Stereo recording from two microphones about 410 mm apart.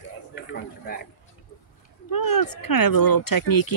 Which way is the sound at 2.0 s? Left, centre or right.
Left.